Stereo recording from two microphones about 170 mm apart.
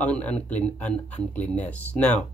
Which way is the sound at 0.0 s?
10° left (ahead or behind).